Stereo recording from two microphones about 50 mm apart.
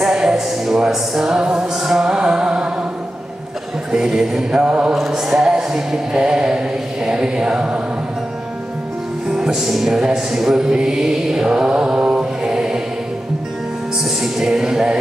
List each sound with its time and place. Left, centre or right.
0.0 s music: centre
3.9 s music: centre
4.6 s mantra: centre
5.1 s music: centre
9.3 s music: centre
14.0 s music: centre